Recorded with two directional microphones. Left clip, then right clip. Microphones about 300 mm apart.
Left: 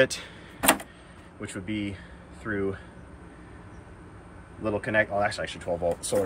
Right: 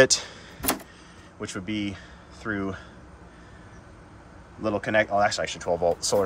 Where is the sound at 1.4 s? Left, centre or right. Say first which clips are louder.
Right 2 dB; centre.